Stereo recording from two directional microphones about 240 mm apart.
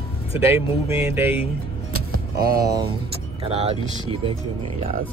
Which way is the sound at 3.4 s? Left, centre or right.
Right.